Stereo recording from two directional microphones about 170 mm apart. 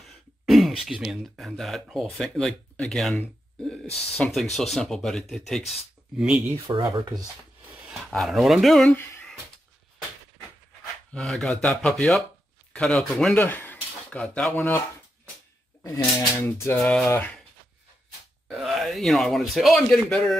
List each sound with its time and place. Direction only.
0.0 s speech: centre (ahead or behind)
6.8 s speech: 20° right (ahead or behind)
7.8 s speech: centre (ahead or behind)
11.1 s speech: centre (ahead or behind)
15.8 s speech: 15° left (ahead or behind)
18.5 s speech: centre (ahead or behind)